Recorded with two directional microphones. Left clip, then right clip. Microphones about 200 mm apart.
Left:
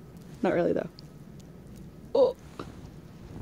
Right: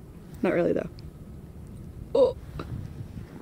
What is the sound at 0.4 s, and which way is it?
Speech, 10° right (ahead or behind).